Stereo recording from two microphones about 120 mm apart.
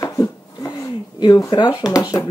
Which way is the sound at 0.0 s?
30° left (ahead or behind).